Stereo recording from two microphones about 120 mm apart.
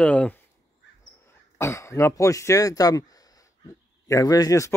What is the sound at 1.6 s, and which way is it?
Speech, 25° left (ahead or behind).